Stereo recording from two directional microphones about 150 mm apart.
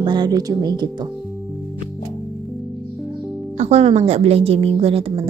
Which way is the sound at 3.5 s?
45° right (ahead or behind).